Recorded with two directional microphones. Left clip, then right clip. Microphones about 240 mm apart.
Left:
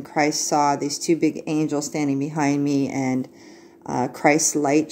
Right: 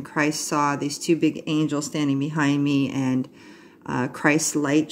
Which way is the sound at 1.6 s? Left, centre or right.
Right.